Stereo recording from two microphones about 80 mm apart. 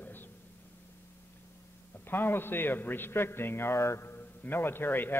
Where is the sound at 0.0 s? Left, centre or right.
Left.